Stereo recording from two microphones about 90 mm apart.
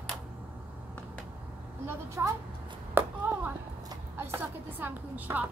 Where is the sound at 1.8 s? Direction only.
30° right (ahead or behind).